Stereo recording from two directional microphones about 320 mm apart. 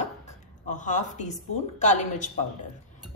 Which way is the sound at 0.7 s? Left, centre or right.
Left.